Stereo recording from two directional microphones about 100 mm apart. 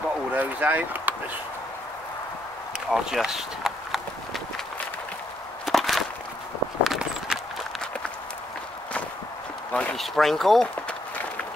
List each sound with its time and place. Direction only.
0.3 s speech: 15° right (ahead or behind)
2.9 s run: 5° right (ahead or behind)
5.7 s a sound: centre (ahead or behind)
6.8 s walk: 5° right (ahead or behind)
9.7 s speech: 15° left (ahead or behind)
9.9 s speech: 5° left (ahead or behind)